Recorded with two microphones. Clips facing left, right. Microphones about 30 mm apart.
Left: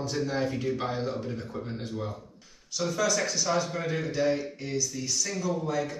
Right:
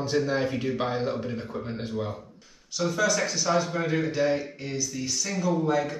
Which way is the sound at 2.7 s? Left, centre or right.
Centre.